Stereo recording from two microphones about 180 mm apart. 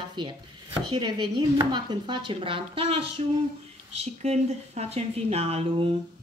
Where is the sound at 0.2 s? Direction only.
25° right (ahead or behind).